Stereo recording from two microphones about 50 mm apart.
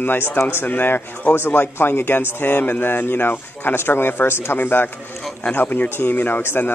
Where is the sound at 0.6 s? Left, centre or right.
Left.